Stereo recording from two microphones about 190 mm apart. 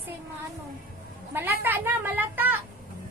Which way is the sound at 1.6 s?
10° right (ahead or behind).